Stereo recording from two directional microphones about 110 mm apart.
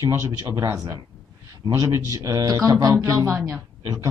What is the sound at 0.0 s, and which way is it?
A man's voice, 35° right (ahead or behind).